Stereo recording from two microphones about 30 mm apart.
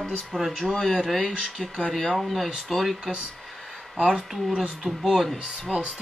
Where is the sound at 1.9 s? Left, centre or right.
Centre.